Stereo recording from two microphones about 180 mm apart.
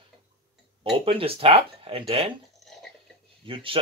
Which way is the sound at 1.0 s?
30° right (ahead or behind).